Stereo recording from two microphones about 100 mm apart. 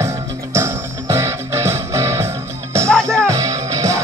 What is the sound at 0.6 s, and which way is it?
Music, 30° right (ahead or behind).